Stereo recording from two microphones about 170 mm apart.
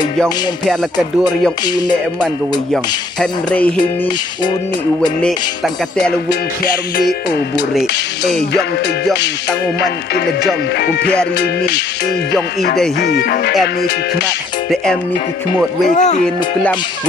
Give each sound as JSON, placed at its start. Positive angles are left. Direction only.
{"t": 2.7, "sound": "speech", "side_deg": 5}
{"t": 10.8, "sound": "speech", "side_deg": 70}
{"t": 11.3, "sound": "music", "side_deg": 85}
{"t": 13.0, "sound": "speech", "side_deg": 75}
{"t": 15.9, "sound": "speech", "side_deg": 45}